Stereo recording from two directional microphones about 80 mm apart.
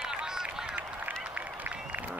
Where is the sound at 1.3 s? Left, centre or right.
Centre.